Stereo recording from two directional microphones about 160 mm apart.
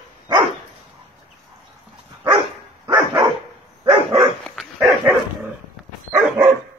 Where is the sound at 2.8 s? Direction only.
25° right (ahead or behind).